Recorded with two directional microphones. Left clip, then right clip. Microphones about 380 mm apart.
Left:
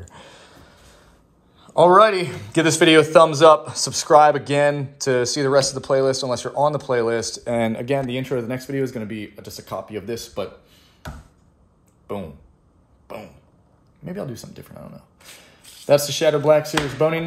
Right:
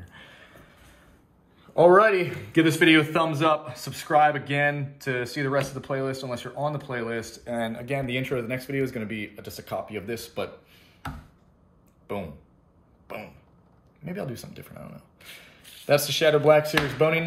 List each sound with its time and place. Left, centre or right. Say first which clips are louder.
2.0 s speech: left 5 dB; centre
7.3 s speech: left 8 dB; left; by 10.8 s centre
14.0 s speech: left 3 dB; centre